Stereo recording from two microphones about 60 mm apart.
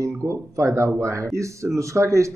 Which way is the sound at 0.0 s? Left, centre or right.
Right.